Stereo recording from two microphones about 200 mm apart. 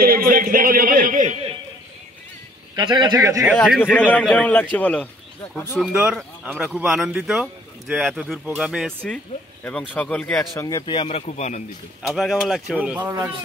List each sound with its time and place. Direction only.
0.0 s a man's voice: 45° right (ahead or behind)
2.7 s speech: 20° right (ahead or behind)
3.8 s a man's voice: 5° left (ahead or behind); by 11.6 s 35° left (ahead or behind)
12.1 s speech: centre (ahead or behind)